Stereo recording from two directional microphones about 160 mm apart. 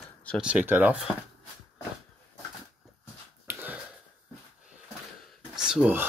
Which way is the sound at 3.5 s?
10° right (ahead or behind).